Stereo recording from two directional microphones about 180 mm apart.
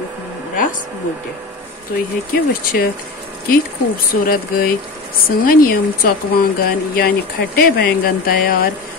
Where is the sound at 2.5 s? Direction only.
55° left (ahead or behind).